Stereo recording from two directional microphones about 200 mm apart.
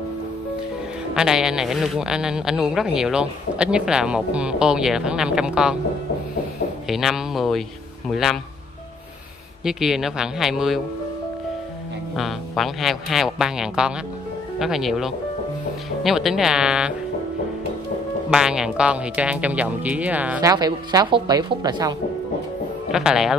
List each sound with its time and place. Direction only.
1.1 s speech: 5° right (ahead or behind)
6.9 s speech: centre (ahead or behind)
9.7 s speech: centre (ahead or behind)
12.2 s speech: centre (ahead or behind)
18.3 s speech: 5° right (ahead or behind)
20.5 s a woman's voice: 20° right (ahead or behind)
22.8 s speech: centre (ahead or behind)